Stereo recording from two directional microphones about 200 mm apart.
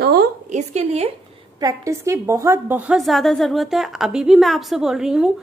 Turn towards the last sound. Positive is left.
turn(degrees=-5)  # may be behind; listen again after turning